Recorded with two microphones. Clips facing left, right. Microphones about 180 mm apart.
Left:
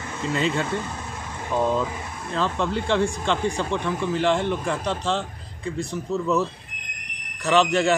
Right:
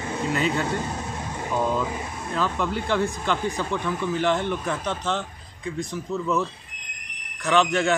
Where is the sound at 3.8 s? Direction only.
5° right (ahead or behind).